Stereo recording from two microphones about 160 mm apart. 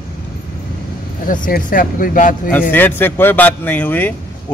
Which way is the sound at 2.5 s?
10° left (ahead or behind).